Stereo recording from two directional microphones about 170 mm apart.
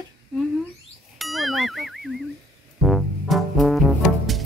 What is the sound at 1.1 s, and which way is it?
Speech, centre (ahead or behind).